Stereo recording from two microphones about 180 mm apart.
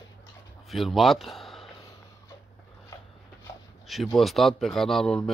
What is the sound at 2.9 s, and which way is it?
Dog, 20° left (ahead or behind).